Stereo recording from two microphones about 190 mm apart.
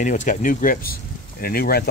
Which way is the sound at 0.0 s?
40° left (ahead or behind).